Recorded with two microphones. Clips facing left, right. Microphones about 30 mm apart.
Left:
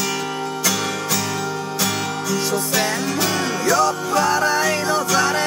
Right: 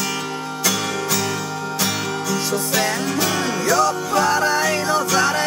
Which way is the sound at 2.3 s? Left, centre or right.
Centre.